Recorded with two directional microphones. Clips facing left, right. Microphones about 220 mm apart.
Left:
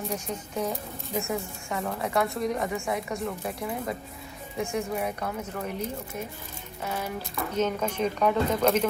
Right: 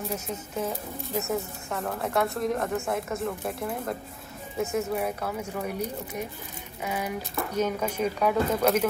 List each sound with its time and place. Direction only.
0.1 s a woman's voice: 5° right (ahead or behind)